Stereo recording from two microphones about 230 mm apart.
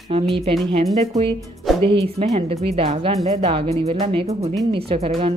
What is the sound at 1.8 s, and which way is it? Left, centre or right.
Speech, right.